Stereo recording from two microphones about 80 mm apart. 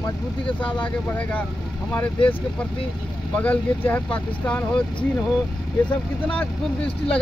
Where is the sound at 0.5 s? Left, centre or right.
Left.